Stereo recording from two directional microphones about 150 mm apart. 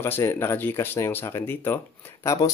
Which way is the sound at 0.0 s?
15° left (ahead or behind).